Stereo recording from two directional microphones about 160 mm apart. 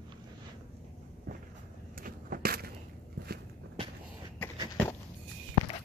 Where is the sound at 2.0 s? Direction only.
65° right (ahead or behind).